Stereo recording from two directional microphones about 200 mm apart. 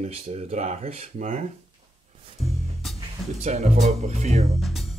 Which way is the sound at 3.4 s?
35° right (ahead or behind).